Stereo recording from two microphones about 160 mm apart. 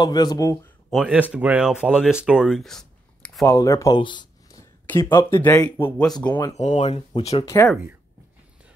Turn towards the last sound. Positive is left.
turn(degrees=15)  # may be behind; listen again after turning